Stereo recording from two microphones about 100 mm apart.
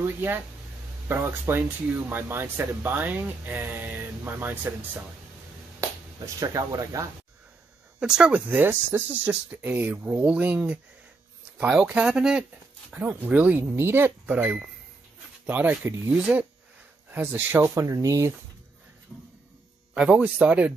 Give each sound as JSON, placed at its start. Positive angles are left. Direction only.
{"t": 0.0, "sound": "speech", "side_deg": -20}
{"t": 6.2, "sound": "speech", "side_deg": -35}
{"t": 8.0, "sound": "speech", "side_deg": -10}
{"t": 17.7, "sound": "speech", "side_deg": -35}
{"t": 20.0, "sound": "speech", "side_deg": -10}